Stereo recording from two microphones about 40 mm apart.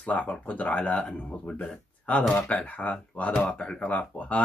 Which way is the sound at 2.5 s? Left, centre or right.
Left.